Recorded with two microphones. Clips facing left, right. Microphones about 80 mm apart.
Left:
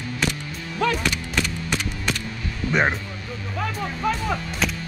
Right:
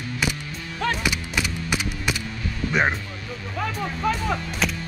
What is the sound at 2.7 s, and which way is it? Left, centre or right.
Speech, centre.